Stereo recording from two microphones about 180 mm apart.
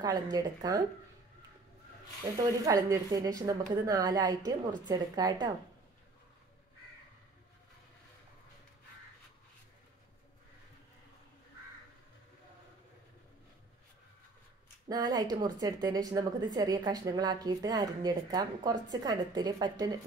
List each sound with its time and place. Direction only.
0.0 s a woman's voice: 20° right (ahead or behind)
2.6 s a woman's voice: 20° right (ahead or behind)
14.9 s a woman's voice: 20° right (ahead or behind)